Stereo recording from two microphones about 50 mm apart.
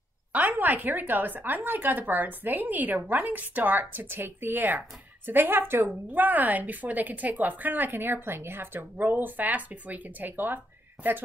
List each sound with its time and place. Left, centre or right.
0.3 s a woman's voice: right